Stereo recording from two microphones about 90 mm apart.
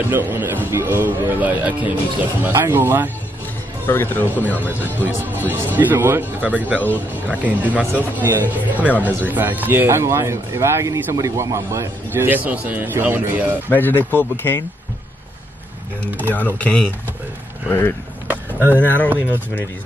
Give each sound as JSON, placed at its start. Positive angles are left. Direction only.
{"t": 0.1, "sound": "speech", "side_deg": -25}
{"t": 3.8, "sound": "speech", "side_deg": 25}
{"t": 5.0, "sound": "speech", "side_deg": -20}
{"t": 8.8, "sound": "speech", "side_deg": 20}
{"t": 9.2, "sound": "speech", "side_deg": -20}
{"t": 13.7, "sound": "speech", "side_deg": 20}
{"t": 16.3, "sound": "speech", "side_deg": 20}
{"t": 18.3, "sound": "vehicle", "side_deg": -20}
{"t": 18.8, "sound": "speech", "side_deg": 20}